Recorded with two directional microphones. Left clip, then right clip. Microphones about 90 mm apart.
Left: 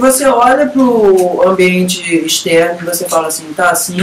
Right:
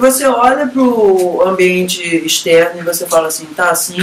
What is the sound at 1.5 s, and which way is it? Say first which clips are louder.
Speech: left 1 dB; centre (ahead or behind).